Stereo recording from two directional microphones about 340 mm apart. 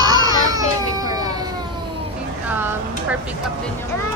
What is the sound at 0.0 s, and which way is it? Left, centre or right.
Baby cry, centre.